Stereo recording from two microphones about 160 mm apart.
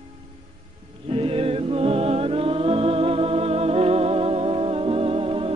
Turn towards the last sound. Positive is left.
turn(degrees=-35)  # may be behind; listen again after turning